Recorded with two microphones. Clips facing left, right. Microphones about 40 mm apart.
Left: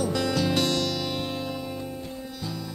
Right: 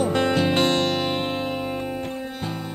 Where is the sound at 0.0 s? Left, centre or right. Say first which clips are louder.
Right 5 dB; right.